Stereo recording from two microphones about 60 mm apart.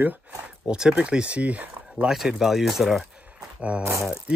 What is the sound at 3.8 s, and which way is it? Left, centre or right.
Speech, right.